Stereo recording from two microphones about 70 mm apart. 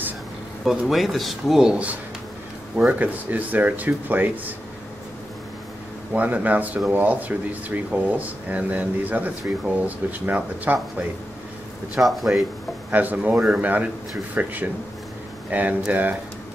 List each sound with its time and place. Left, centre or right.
0.7 s speech: centre; by 4.6 s right
6.1 s speech: right
11.9 s speech: centre
12.9 s speech: right